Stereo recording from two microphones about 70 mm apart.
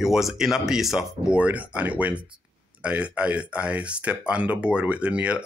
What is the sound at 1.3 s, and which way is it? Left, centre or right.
Speech, right.